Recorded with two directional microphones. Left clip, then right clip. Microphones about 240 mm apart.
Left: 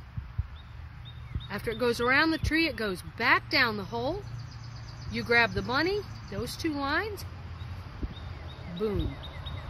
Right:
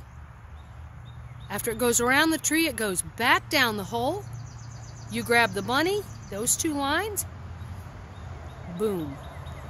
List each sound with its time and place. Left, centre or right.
1.5 s speech: right